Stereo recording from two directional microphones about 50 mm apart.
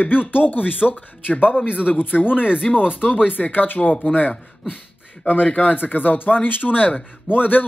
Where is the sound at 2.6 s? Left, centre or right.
Centre.